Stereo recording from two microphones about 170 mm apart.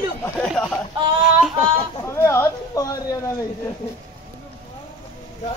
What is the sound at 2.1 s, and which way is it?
Speech, 15° left (ahead or behind).